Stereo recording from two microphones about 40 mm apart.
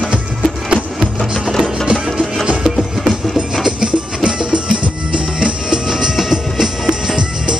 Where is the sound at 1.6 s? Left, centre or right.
Centre.